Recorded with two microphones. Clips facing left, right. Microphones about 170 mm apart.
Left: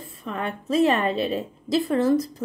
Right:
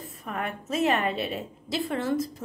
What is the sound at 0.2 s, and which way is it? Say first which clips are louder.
A woman's voice: left 3 dB; 30° left (ahead or behind).